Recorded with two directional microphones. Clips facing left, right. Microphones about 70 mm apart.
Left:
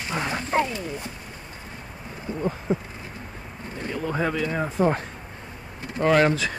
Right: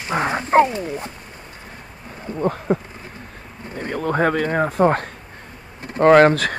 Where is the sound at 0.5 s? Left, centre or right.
Right.